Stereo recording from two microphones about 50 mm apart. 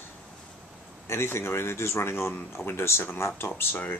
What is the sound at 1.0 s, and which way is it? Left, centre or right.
Speech, left.